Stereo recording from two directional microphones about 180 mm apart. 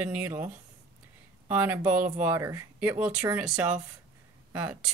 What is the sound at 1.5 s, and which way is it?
Speech, 10° right (ahead or behind).